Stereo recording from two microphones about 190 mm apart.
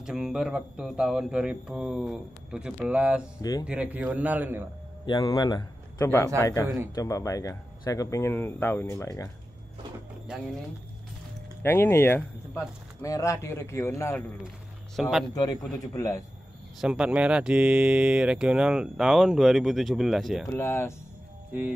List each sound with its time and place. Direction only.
0.0 s a man's voice: 5° right (ahead or behind)
5.0 s a man's voice: 25° left (ahead or behind)
11.6 s speech: 10° left (ahead or behind)
15.0 s speech: centre (ahead or behind)
15.3 s a man's voice: 20° left (ahead or behind)
16.8 s speech: 5° right (ahead or behind)
20.4 s speech: 10° left (ahead or behind)